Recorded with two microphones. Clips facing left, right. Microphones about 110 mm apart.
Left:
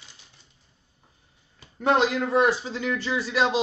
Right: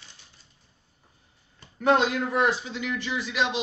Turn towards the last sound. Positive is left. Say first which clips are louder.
# left 4 dB
turn(degrees=35)  # may be behind; listen again after turning